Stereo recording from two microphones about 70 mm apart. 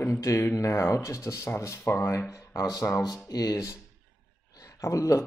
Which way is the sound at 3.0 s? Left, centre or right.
Left.